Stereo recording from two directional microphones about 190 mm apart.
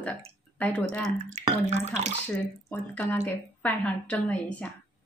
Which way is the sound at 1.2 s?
40° right (ahead or behind).